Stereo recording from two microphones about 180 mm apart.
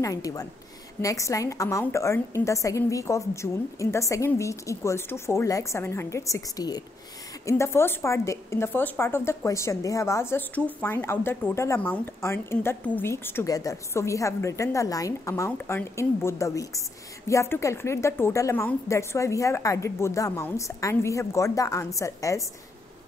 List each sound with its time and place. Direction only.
0.0 s a woman's voice: 20° left (ahead or behind)